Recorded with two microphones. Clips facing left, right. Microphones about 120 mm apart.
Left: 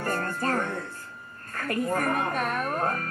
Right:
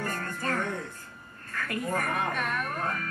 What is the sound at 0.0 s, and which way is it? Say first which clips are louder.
Music: left 5 dB; 45° left (ahead or behind).